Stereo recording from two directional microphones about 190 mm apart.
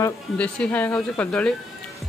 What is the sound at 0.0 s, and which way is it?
Speech, 10° left (ahead or behind).